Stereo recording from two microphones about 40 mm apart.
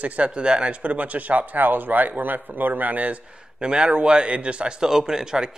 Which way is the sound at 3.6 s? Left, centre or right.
Right.